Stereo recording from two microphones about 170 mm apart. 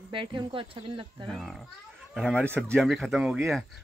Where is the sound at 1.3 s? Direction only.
Centre (ahead or behind).